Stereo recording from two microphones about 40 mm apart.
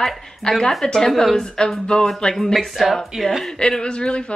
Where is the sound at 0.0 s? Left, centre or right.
Centre.